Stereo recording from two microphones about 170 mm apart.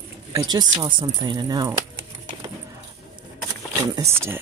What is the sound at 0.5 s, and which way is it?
Speech, 25° right (ahead or behind).